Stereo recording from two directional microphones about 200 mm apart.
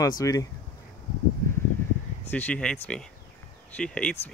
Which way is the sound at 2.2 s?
10° left (ahead or behind).